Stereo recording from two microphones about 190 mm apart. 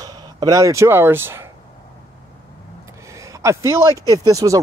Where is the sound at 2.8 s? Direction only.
15° right (ahead or behind).